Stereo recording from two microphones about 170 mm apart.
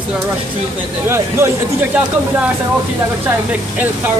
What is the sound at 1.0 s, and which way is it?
Speech, 15° right (ahead or behind).